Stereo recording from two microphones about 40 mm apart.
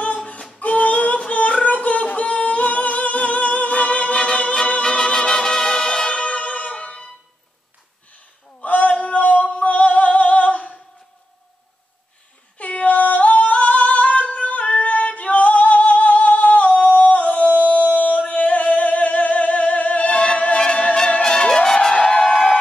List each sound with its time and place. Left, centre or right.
0.0 s female singing: left
0.6 s a sound: left
4.2 s music: centre
4.6 s music: left
4.8 s music: centre
8.5 s a sound: left
9.0 s male singing: left
9.5 s singing: left
12.5 s singing: left
16.3 s humming: left
16.7 s singing: left
22.1 s a sound: left